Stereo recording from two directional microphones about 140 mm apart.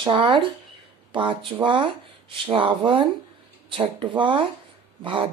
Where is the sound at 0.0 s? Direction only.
35° right (ahead or behind).